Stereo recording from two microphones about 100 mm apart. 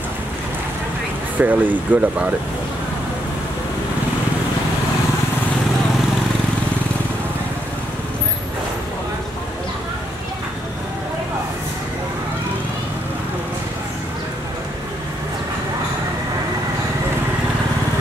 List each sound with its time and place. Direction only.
1.4 s speech: 15° right (ahead or behind)